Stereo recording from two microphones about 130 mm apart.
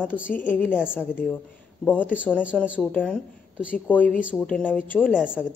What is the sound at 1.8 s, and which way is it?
A man's voice, 10° left (ahead or behind).